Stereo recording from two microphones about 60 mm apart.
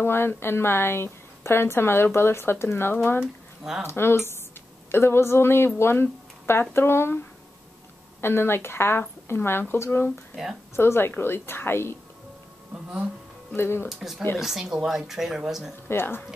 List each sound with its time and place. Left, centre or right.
0.0 s speech: left
8.2 s speech: left
13.6 s speech: left
13.8 s speech: centre
15.9 s speech: left